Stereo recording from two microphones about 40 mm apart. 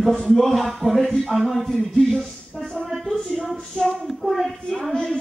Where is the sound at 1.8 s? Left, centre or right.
Centre.